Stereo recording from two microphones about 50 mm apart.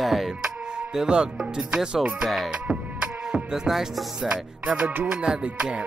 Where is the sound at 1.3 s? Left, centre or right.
Centre.